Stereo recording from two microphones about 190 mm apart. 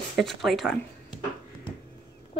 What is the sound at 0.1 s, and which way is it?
Speech, centre (ahead or behind).